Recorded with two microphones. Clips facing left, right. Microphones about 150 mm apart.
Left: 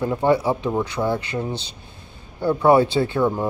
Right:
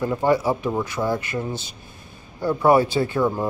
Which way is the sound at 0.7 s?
10° left (ahead or behind).